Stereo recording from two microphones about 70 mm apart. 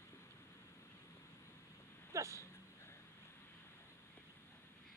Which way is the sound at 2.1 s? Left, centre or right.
Right.